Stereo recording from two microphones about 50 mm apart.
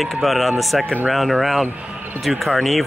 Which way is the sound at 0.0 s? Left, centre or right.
Centre.